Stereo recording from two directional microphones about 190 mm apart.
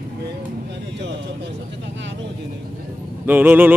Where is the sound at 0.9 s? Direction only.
65° right (ahead or behind).